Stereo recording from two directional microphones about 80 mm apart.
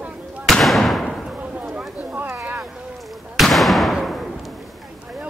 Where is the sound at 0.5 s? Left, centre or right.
Centre.